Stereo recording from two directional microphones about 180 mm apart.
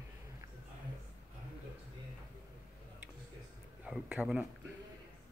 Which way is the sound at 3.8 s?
5° right (ahead or behind).